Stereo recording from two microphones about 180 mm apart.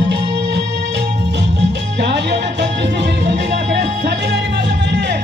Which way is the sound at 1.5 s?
75° right (ahead or behind).